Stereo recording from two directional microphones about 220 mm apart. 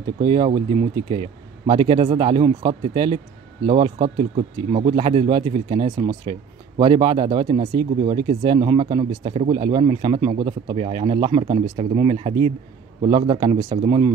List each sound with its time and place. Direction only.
0.0 s speech: 20° right (ahead or behind)
1.7 s speech: 20° right (ahead or behind)